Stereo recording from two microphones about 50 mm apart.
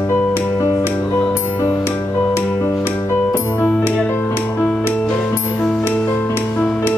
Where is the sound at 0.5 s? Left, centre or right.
Left.